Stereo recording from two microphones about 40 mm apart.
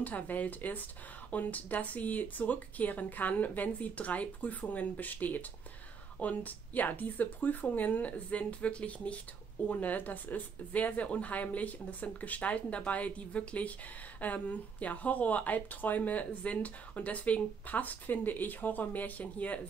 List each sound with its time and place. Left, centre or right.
0.0 s speech: left
9.7 s speech: left